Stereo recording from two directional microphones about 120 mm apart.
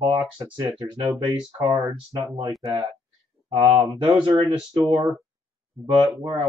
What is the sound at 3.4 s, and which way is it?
Speech, 45° right (ahead or behind).